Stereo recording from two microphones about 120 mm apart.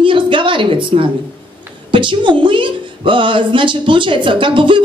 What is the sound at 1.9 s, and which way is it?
Speech, 45° right (ahead or behind).